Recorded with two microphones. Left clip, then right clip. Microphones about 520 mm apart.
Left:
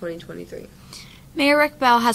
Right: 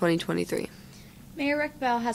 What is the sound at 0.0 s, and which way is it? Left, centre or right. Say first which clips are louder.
Speech: right 6 dB; right.